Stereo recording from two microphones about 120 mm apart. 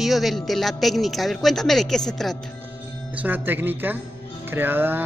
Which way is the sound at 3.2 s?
15° right (ahead or behind).